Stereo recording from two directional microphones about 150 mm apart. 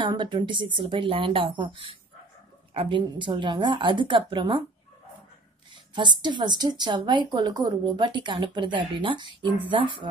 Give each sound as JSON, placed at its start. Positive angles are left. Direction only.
{"t": 0.0, "sound": "speech", "side_deg": -30}
{"t": 6.2, "sound": "speech", "side_deg": -30}